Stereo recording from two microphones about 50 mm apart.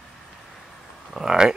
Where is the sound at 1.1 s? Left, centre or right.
Centre.